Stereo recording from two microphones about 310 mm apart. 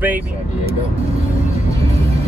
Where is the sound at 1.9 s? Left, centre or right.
Centre.